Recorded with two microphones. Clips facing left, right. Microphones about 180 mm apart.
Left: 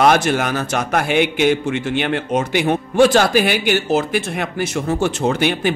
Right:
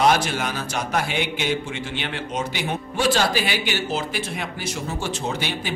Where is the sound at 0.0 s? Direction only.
55° left (ahead or behind).